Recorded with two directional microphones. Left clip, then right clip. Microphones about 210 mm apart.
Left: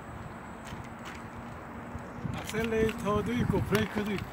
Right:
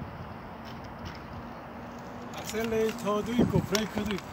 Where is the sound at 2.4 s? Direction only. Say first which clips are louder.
Right 1 dB; centre (ahead or behind).